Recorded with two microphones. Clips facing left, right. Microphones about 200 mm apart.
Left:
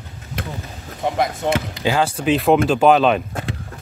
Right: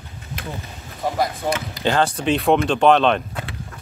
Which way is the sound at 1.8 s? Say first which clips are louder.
Even; 5° left (ahead or behind).